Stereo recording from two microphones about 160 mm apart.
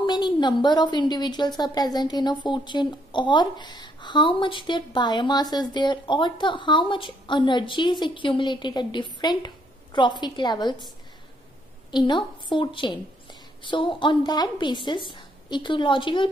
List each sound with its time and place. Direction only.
0.0 s a woman's voice: 30° left (ahead or behind)
11.9 s a woman's voice: 30° left (ahead or behind)